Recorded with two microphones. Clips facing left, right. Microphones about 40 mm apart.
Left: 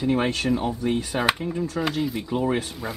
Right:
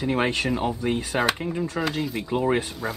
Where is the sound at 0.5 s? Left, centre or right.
Right.